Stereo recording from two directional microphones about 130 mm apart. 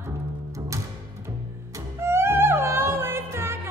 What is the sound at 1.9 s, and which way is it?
Music, 20° right (ahead or behind).